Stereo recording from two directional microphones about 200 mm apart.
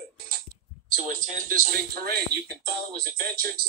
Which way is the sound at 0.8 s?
45° right (ahead or behind).